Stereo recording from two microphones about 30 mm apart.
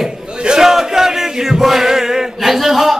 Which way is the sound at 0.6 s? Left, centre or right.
Centre.